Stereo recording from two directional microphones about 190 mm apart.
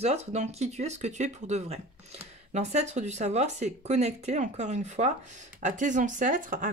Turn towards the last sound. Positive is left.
turn(degrees=-40)  # may be behind; listen again after turning